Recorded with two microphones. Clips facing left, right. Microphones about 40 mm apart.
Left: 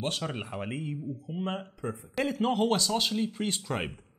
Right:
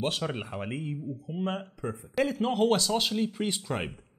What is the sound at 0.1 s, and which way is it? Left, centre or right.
Speech, centre.